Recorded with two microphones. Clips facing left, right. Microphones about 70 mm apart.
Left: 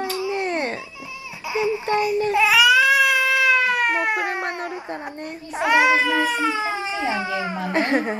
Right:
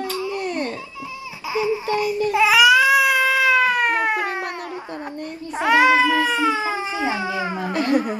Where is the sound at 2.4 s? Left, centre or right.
Centre.